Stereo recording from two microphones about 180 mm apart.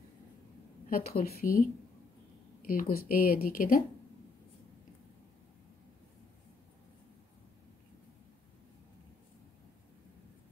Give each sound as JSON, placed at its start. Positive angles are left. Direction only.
{"t": 0.8, "sound": "a woman's voice", "side_deg": 55}
{"t": 2.6, "sound": "speech", "side_deg": 50}